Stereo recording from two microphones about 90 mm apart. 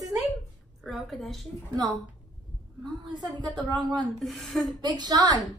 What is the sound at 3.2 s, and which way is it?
Speech, 55° right (ahead or behind).